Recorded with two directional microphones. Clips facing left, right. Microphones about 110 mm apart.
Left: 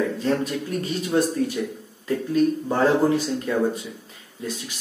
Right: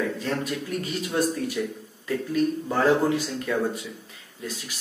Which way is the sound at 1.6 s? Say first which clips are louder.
Left 1 dB; 10° left (ahead or behind).